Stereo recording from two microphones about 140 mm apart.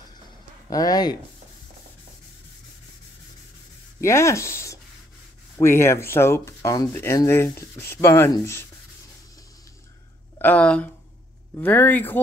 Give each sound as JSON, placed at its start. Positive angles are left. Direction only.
{"t": 0.7, "sound": "speech", "side_deg": 25}
{"t": 4.0, "sound": "speech", "side_deg": 20}
{"t": 10.4, "sound": "speech", "side_deg": 10}